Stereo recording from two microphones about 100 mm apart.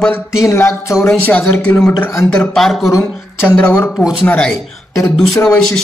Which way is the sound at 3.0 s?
20° left (ahead or behind).